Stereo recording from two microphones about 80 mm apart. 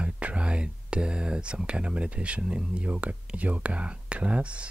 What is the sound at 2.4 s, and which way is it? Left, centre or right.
Speech, centre.